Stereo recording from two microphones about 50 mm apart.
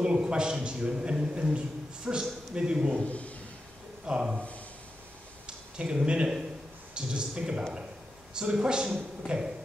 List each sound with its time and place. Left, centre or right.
0.0 s a man's voice: centre
3.1 s speech: left
4.0 s speech: centre
5.8 s a man's voice: right